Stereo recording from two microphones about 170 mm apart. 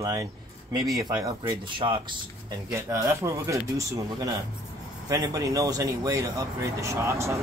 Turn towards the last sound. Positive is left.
turn(degrees=-15)  # may be behind; listen again after turning